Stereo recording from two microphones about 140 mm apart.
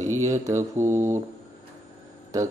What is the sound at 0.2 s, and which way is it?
Speech, 20° right (ahead or behind).